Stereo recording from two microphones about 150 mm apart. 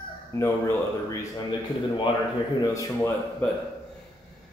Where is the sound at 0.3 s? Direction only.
15° left (ahead or behind).